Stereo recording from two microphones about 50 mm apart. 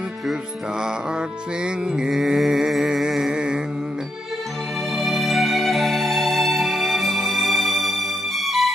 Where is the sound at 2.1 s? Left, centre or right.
Centre.